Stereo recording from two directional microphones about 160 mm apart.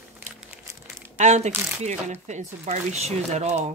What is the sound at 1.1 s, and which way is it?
Speech, 45° right (ahead or behind).